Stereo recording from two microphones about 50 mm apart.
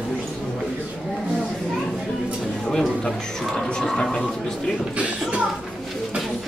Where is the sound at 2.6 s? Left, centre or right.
Centre.